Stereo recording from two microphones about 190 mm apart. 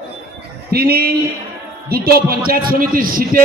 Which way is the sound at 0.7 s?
55° right (ahead or behind).